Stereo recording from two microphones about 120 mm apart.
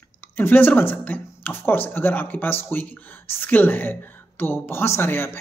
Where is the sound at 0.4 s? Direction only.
15° left (ahead or behind).